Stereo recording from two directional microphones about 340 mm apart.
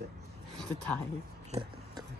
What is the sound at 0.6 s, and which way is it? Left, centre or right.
Speech, centre.